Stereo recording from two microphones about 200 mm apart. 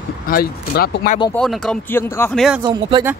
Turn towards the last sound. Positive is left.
turn(degrees=-20)  # may be behind; listen again after turning